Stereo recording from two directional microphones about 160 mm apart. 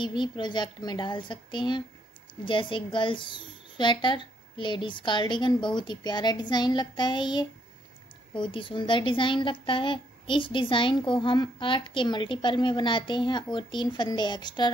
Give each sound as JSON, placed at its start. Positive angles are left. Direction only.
{"t": 0.0, "sound": "a woman's voice", "side_deg": 30}